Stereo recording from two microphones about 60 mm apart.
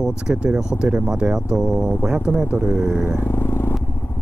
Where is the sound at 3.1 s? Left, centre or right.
Left.